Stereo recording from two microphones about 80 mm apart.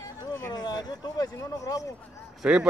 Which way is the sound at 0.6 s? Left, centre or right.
Left.